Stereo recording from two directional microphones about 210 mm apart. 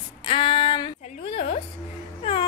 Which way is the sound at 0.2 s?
25° left (ahead or behind).